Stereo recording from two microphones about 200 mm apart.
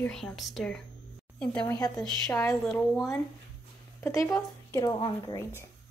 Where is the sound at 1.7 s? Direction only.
20° left (ahead or behind).